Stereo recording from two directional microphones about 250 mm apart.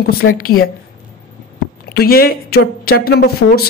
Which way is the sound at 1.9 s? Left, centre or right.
Left.